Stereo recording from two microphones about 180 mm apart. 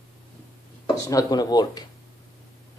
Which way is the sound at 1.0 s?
20° left (ahead or behind).